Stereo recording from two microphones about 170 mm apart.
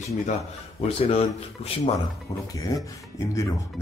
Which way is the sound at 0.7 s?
35° left (ahead or behind).